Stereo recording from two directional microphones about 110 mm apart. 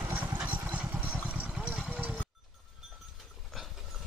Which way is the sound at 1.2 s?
10° right (ahead or behind).